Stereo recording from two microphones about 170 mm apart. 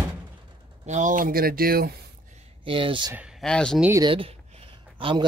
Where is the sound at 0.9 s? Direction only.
50° right (ahead or behind).